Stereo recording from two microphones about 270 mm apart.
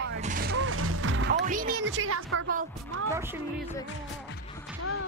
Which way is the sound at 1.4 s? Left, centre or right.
Right.